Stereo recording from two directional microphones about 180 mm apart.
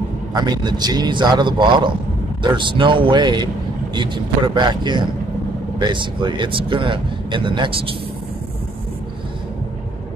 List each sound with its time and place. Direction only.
0.3 s speech: 25° right (ahead or behind)